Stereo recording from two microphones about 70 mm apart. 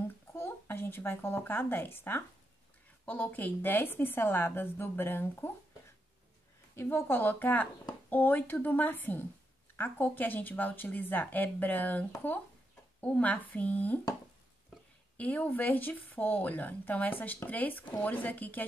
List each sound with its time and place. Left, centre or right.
0.5 s a woman's voice: left
6.7 s speech: left
15.1 s speech: left